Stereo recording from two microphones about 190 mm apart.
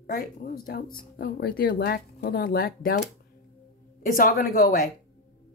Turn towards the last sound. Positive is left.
turn(degrees=50)  # may be behind; listen again after turning